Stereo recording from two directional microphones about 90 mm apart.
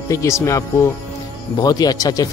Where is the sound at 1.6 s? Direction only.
45° left (ahead or behind).